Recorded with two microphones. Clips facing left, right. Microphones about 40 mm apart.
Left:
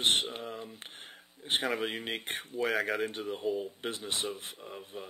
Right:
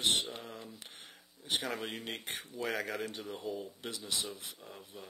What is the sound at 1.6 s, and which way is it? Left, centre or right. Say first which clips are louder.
Speech: left 6 dB; left.